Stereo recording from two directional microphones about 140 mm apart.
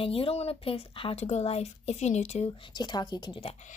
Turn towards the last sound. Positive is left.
turn(degrees=50)  # may be behind; listen again after turning